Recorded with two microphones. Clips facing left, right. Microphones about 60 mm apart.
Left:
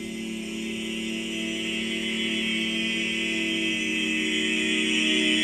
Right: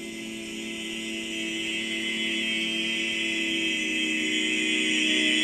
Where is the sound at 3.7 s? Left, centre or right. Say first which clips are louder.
Left 1 dB; centre.